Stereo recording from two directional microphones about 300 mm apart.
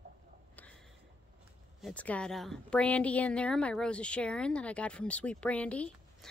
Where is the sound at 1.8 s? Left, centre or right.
Centre.